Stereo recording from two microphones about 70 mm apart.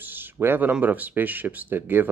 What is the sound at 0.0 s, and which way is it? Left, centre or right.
Speech, right.